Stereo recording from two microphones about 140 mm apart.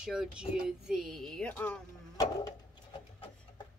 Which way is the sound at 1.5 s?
15° left (ahead or behind).